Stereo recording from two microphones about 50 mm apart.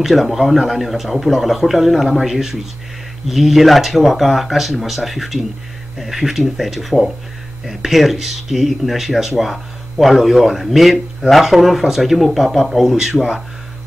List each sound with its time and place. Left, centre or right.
0.0 s speech: centre